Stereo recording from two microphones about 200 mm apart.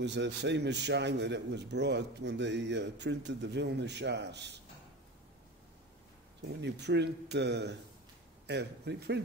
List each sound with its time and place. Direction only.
0.0 s a man's voice: 60° right (ahead or behind)
6.6 s a man's voice: 60° right (ahead or behind)